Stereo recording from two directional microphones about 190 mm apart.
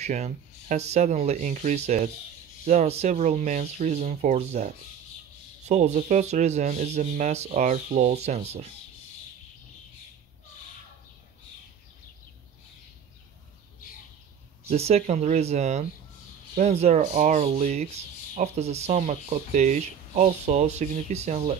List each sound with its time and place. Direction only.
0.0 s speech: 40° right (ahead or behind)
5.7 s speech: 35° right (ahead or behind)
14.7 s speech: 35° right (ahead or behind)